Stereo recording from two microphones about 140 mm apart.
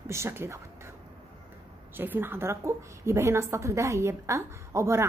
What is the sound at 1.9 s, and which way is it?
A woman's voice, 15° right (ahead or behind).